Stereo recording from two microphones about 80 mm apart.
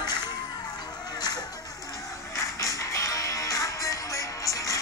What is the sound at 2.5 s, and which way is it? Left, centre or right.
Music, left.